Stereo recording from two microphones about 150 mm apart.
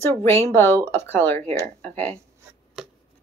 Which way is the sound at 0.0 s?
15° left (ahead or behind).